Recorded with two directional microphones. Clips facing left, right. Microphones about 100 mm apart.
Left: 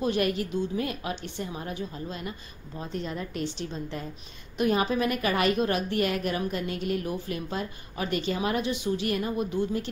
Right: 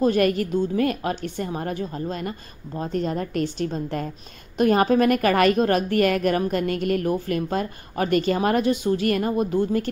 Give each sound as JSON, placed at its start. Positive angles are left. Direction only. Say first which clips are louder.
{"t": 0.0, "sound": "a woman's voice", "louder": "right 7 dB", "side_deg": -50}